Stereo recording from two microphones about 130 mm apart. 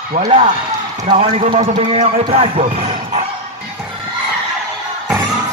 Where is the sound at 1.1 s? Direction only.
45° right (ahead or behind).